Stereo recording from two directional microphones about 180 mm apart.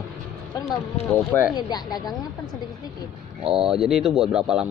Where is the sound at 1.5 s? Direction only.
20° left (ahead or behind).